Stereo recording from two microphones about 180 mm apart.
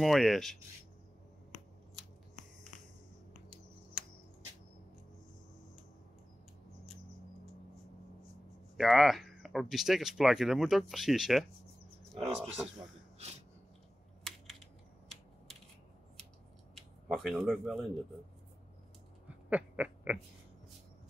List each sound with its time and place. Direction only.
0.0 s speech: centre (ahead or behind)
8.7 s speech: centre (ahead or behind)
12.3 s a man's voice: 35° right (ahead or behind)
16.7 s speech: centre (ahead or behind)
19.2 s owl: 5° right (ahead or behind)